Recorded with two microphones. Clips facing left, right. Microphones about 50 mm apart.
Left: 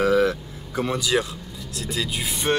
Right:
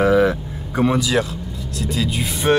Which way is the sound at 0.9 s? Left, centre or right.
Centre.